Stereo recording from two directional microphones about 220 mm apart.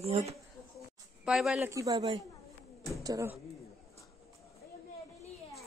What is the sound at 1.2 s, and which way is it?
Speech, centre (ahead or behind).